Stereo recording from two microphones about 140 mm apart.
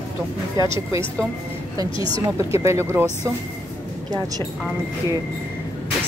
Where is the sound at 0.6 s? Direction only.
35° left (ahead or behind).